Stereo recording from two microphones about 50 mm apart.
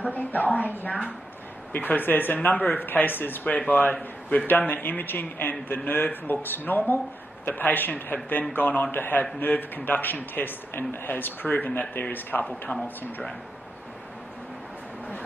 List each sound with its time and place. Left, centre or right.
0.1 s a woman's voice: left